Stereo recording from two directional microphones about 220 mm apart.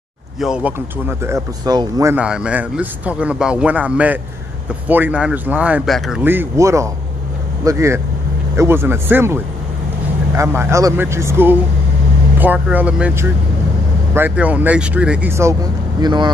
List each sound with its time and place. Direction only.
0.4 s speech: 5° right (ahead or behind); by 16.3 s 20° right (ahead or behind)